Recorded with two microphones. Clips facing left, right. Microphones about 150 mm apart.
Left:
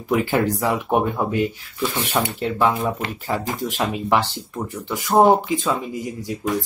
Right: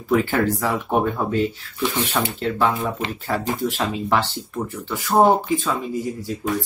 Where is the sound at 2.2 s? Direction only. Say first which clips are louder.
Left 2 dB; 20° left (ahead or behind).